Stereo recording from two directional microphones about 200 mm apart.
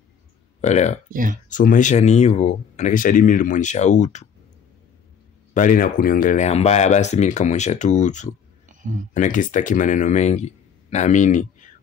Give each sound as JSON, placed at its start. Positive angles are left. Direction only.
{"t": 0.6, "sound": "speech", "side_deg": 35}
{"t": 5.5, "sound": "speech", "side_deg": 40}